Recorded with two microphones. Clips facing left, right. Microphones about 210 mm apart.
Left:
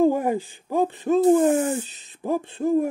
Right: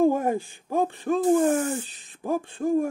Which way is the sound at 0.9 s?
20° left (ahead or behind).